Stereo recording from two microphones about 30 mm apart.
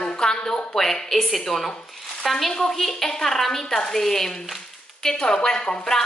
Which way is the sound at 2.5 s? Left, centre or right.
Centre.